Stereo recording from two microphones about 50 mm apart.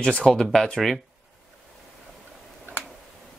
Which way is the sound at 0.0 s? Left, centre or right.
Centre.